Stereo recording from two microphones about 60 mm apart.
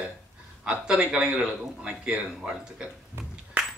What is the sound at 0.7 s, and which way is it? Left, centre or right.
Speech, centre.